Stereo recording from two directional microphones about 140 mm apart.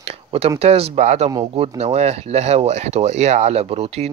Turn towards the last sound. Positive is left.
turn(degrees=-50)  # may be behind; listen again after turning